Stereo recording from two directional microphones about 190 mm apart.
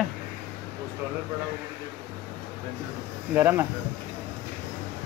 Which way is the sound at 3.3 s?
10° right (ahead or behind).